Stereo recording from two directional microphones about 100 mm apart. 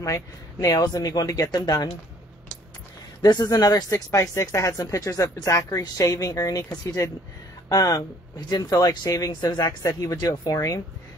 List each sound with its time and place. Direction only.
0.0 s speech: 30° left (ahead or behind)
3.2 s speech: 45° left (ahead or behind)